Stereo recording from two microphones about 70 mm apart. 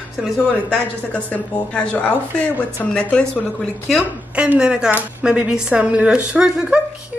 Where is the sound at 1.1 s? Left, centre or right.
Centre.